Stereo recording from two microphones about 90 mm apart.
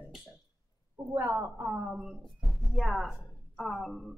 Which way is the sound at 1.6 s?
15° right (ahead or behind).